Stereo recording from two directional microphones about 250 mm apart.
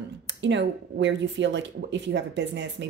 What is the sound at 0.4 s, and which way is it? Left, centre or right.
Speech, right.